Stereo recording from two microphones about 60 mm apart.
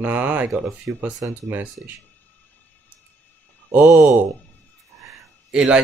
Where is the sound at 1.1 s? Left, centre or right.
Right.